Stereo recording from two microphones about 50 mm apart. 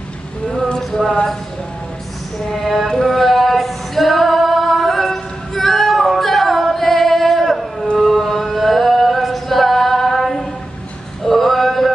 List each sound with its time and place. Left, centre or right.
0.5 s a sound: left
2.5 s music: centre
2.9 s female singing: centre
8.0 s singing: centre
11.2 s male singing: centre